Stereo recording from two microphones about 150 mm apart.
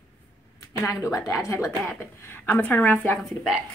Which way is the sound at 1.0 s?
20° left (ahead or behind).